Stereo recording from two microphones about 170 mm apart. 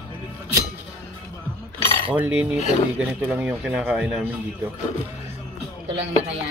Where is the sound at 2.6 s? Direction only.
40° left (ahead or behind).